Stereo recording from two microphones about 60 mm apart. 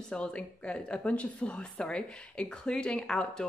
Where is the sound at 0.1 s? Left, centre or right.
Centre.